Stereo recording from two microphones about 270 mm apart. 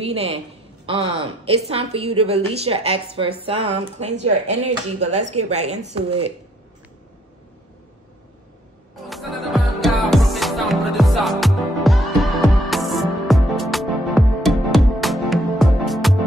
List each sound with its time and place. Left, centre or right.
0.0 s a woman's voice: right
1.4 s a woman's voice: right
9.0 s music: centre